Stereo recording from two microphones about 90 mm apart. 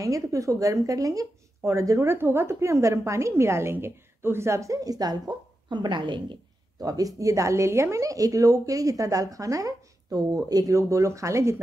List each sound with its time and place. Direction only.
0.0 s speech: 35° right (ahead or behind); by 6.3 s 60° right (ahead or behind)
6.8 s speech: 40° right (ahead or behind)